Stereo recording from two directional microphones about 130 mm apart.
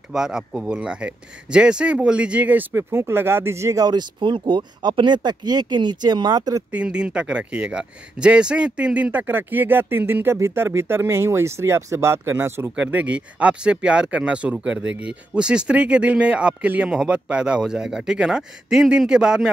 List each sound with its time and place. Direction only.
0.1 s speech: 5° right (ahead or behind); by 6.6 s 30° right (ahead or behind)
6.7 s speech: 10° right (ahead or behind)